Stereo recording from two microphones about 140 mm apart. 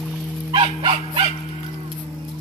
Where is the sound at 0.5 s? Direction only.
40° right (ahead or behind).